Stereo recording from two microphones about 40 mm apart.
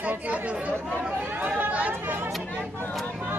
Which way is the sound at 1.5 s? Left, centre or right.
Right.